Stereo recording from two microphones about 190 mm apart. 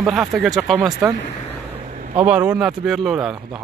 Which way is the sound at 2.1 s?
5° right (ahead or behind).